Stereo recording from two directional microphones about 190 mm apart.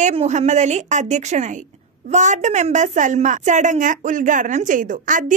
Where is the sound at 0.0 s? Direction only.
35° right (ahead or behind).